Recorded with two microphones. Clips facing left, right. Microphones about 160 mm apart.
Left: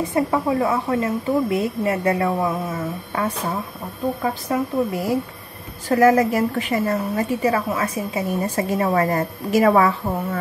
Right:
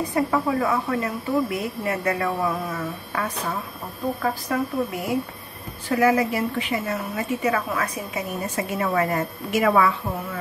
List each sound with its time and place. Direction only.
0.1 s a woman's voice: 25° left (ahead or behind)
5.9 s a woman's voice: 45° left (ahead or behind)